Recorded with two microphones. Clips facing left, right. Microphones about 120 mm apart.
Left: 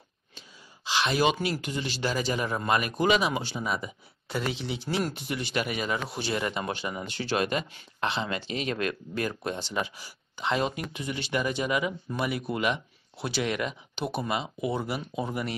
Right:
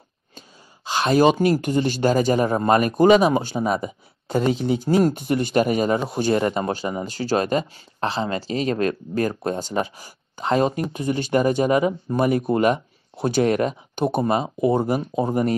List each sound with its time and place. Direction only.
0.8 s speech: 45° right (ahead or behind)